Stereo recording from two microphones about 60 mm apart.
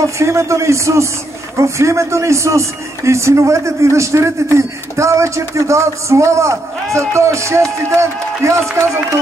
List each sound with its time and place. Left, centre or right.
0.2 s speech: right